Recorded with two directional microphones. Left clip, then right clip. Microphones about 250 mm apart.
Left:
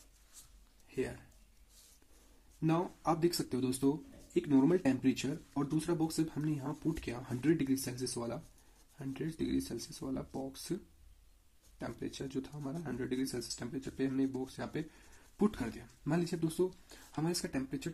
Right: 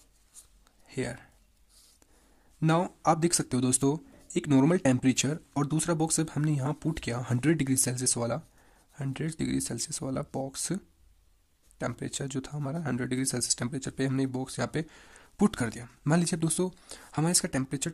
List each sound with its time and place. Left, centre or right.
0.8 s a sound: right
2.6 s speech: right
11.8 s speech: right